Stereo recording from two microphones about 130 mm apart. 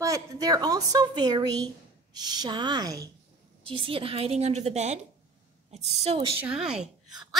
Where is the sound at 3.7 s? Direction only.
45° right (ahead or behind).